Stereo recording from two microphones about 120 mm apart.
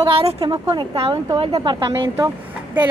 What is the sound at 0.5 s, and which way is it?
A woman's voice, 40° right (ahead or behind).